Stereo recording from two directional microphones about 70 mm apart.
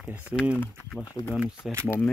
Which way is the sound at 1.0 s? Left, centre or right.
Left.